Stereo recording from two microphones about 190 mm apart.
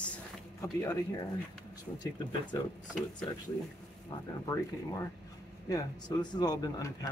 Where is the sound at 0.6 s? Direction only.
15° left (ahead or behind).